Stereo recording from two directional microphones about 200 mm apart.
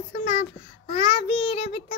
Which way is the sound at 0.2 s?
30° left (ahead or behind).